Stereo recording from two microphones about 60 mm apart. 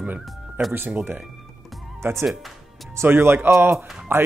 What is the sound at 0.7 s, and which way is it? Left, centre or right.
Speech, right.